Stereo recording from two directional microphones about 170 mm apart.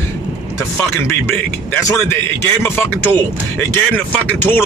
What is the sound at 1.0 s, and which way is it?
Speech, 15° left (ahead or behind).